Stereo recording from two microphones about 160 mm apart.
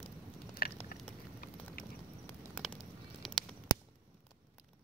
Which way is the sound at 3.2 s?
Centre (ahead or behind).